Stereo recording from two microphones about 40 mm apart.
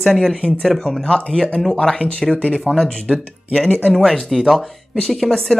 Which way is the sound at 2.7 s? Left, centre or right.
Centre.